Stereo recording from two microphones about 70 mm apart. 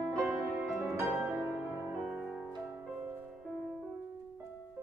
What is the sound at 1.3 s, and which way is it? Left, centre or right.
Music, right.